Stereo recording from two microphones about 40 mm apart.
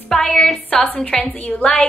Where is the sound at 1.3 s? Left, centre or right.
Left.